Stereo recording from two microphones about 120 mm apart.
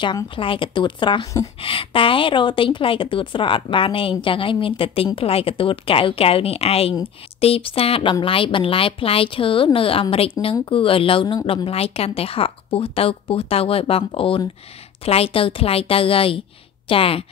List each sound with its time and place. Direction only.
0.0 s a woman's voice: 45° left (ahead or behind)